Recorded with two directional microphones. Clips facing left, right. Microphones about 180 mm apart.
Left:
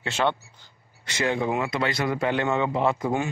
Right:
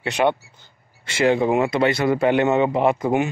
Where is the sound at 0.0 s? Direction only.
15° right (ahead or behind).